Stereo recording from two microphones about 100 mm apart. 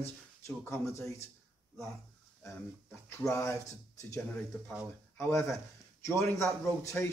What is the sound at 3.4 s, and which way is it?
Speech, 30° left (ahead or behind).